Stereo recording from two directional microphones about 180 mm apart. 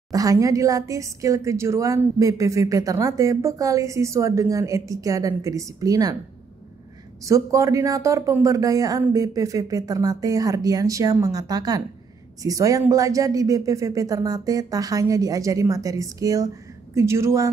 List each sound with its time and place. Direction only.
0.1 s a woman's voice: 20° right (ahead or behind)
7.2 s a woman's voice: 15° right (ahead or behind)